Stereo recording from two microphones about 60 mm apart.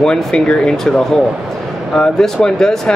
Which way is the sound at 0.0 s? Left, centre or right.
Centre.